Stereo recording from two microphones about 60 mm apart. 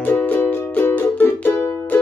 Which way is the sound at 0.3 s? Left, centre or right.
Left.